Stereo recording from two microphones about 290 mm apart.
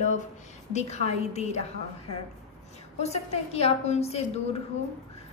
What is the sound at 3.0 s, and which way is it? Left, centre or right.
A woman's voice, left.